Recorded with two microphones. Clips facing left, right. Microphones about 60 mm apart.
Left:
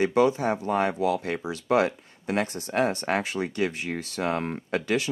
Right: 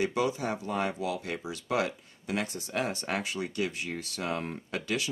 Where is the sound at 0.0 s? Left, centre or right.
Left.